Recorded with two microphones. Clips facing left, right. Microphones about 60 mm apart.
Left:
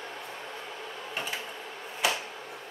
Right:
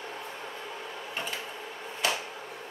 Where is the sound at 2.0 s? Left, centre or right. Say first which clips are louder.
Left 1 dB; centre.